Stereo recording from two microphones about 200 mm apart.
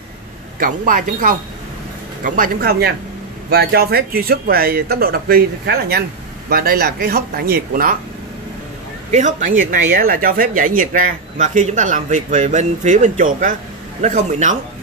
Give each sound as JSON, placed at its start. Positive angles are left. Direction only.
{"t": 0.6, "sound": "speech", "side_deg": -45}
{"t": 9.1, "sound": "speech", "side_deg": -40}